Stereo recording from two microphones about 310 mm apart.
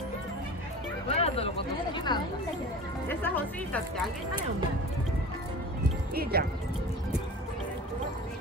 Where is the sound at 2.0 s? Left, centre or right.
Centre.